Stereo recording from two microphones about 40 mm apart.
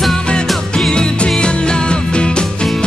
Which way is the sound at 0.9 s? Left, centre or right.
Left.